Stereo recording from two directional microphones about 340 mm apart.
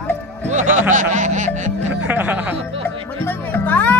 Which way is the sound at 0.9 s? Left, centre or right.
Right.